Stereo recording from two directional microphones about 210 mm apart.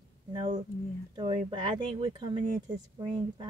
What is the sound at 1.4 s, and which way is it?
Speech, 25° right (ahead or behind).